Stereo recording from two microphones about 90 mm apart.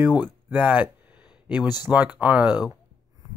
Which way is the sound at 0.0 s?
20° right (ahead or behind).